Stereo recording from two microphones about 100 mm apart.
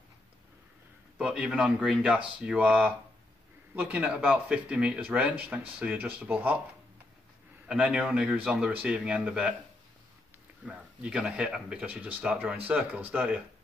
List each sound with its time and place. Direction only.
1.1 s speech: 10° right (ahead or behind)
7.6 s speech: 10° right (ahead or behind)
10.6 s speech: 10° right (ahead or behind)